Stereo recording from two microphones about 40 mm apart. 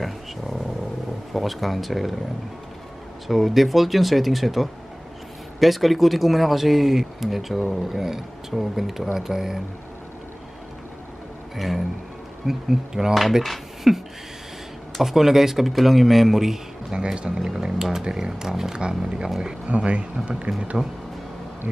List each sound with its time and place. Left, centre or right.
1.3 s speech: centre
3.3 s speech: centre
11.5 s music: centre
12.4 s speech: centre
15.0 s speech: centre
16.9 s speech: right
17.5 s speech: centre
19.6 s speech: right